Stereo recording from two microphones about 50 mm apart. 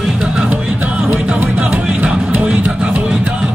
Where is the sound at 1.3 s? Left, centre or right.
Right.